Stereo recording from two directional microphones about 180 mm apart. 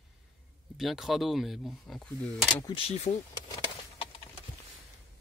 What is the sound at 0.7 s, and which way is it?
Speech, centre (ahead or behind).